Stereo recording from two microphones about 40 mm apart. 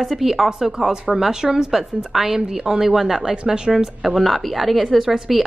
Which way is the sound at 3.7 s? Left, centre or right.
Centre.